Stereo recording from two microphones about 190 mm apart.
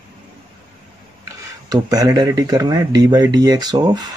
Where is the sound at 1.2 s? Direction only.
20° right (ahead or behind).